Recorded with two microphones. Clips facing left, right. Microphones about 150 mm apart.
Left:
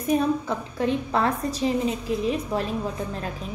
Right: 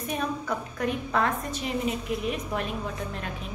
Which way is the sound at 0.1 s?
30° left (ahead or behind).